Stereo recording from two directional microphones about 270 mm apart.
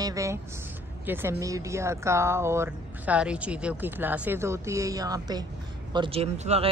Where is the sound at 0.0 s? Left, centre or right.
Centre.